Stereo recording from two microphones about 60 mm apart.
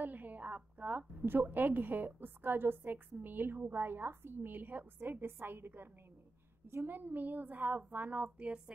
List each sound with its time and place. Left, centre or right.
0.0 s a woman's voice: right